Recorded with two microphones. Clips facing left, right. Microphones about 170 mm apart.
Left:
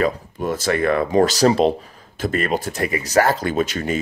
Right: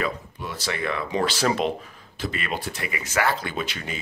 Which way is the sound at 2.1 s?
45° left (ahead or behind).